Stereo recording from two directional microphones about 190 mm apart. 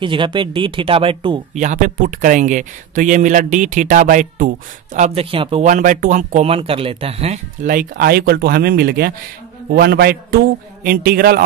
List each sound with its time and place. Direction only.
0.0 s speech: 25° right (ahead or behind)
1.5 s speech: 40° right (ahead or behind)
5.7 s speech: 45° right (ahead or behind)
7.6 s a man's voice: 50° right (ahead or behind)